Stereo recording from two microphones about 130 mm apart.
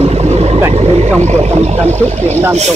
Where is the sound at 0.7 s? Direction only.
55° right (ahead or behind).